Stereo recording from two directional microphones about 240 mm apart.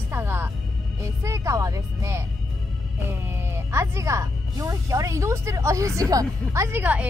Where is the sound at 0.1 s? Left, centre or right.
Centre.